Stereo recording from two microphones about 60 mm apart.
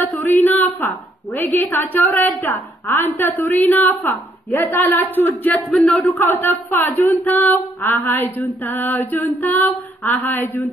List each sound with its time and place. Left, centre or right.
0.0 s a woman's voice: left
6.1 s a woman's voice: left